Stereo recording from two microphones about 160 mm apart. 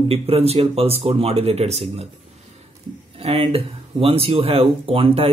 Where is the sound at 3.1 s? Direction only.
35° right (ahead or behind).